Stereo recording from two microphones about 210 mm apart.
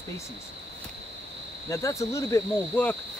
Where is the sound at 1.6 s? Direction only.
15° left (ahead or behind).